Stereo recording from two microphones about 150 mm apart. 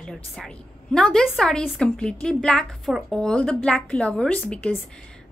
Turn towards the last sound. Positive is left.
turn(degrees=5)  # may be behind; listen again after turning